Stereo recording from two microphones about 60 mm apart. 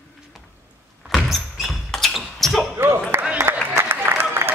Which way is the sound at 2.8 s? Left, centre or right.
Right.